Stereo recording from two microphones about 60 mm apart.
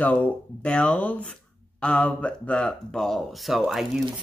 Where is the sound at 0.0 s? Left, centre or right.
Left.